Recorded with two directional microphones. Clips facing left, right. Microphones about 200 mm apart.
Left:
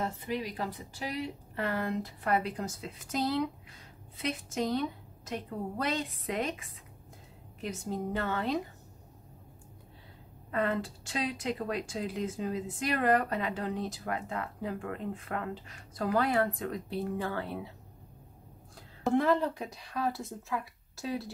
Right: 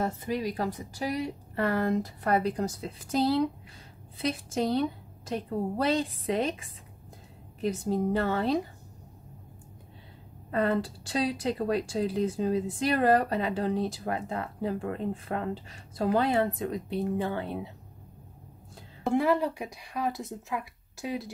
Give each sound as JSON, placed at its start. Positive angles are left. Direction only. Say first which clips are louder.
{"t": 0.0, "sound": "speech", "louder": "right 4 dB", "side_deg": -40}
{"t": 7.6, "sound": "speech", "louder": "right 7 dB", "side_deg": -35}
{"t": 10.5, "sound": "speech", "louder": "right 4 dB", "side_deg": -35}
{"t": 19.0, "sound": "speech", "louder": "right 1 dB", "side_deg": -10}